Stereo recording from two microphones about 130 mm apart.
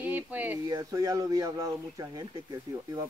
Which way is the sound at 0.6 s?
30° right (ahead or behind).